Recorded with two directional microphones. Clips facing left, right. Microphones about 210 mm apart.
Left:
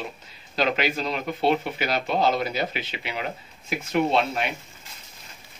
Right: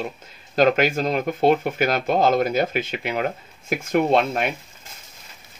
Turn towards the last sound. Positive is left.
turn(degrees=-50)  # may be behind; listen again after turning